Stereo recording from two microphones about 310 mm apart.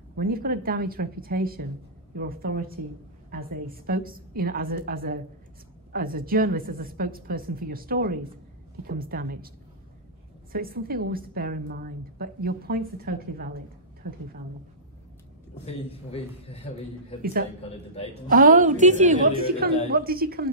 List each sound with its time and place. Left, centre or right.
0.1 s a woman's voice: right
10.5 s a woman's voice: right
15.5 s a man's voice: centre
17.2 s a woman's voice: right
17.9 s a man's voice: centre
18.3 s a woman's voice: right